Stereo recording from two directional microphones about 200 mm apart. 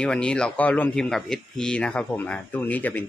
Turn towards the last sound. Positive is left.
turn(degrees=10)  # may be behind; listen again after turning